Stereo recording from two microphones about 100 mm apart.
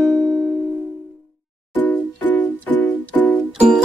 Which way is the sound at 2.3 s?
20° left (ahead or behind).